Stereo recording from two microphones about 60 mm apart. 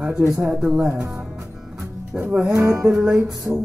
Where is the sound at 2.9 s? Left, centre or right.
Centre.